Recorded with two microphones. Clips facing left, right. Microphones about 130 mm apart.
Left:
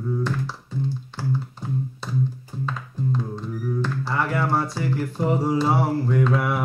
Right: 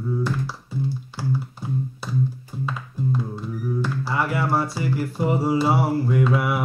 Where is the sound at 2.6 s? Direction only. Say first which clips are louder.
Right 1 dB; 10° right (ahead or behind).